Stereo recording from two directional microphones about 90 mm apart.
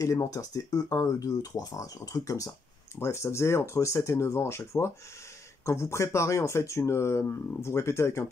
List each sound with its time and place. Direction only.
0.0 s speech: 40° left (ahead or behind)